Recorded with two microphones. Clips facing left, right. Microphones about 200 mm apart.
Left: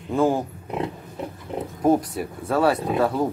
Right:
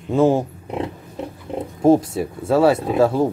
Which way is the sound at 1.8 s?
25° right (ahead or behind).